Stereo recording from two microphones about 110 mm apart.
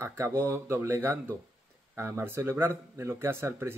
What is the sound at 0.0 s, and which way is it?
Speech, 25° right (ahead or behind).